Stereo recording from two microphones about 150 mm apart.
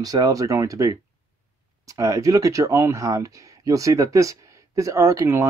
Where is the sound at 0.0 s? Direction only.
25° right (ahead or behind).